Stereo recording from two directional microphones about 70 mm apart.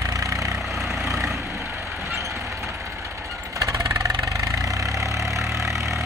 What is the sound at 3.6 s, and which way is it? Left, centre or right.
Vehicle, right.